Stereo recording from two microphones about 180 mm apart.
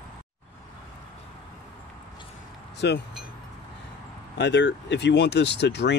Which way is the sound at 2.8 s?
75° left (ahead or behind).